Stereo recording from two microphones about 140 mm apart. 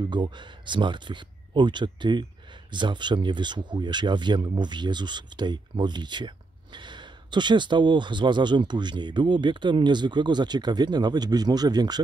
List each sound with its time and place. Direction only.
0.1 s speech: 35° right (ahead or behind)